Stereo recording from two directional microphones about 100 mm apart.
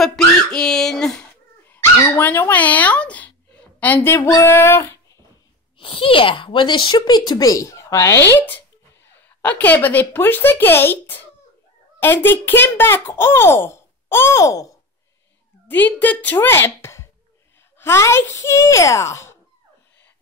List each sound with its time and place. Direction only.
0.0 s a sound: 5° left (ahead or behind)
1.7 s dog: 20° left (ahead or behind)
5.8 s a child's voice: 65° left (ahead or behind); by 8.4 s 30° left (ahead or behind)
8.4 s a child's voice: 20° left (ahead or behind)
15.7 s a child's voice: 15° left (ahead or behind)